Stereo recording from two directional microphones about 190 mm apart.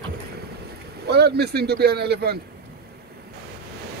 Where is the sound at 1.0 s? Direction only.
60° right (ahead or behind).